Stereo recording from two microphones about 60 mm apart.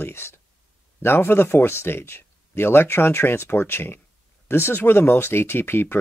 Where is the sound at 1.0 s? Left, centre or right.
Left.